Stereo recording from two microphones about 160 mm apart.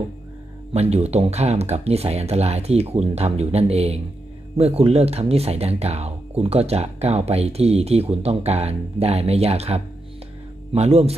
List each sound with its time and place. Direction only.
0.7 s speech: 40° right (ahead or behind)